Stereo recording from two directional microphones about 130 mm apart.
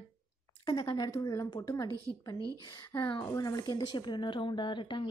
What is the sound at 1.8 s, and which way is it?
Speech, 25° right (ahead or behind).